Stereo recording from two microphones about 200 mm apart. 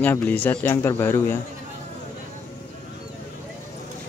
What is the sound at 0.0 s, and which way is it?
Speech, 10° left (ahead or behind).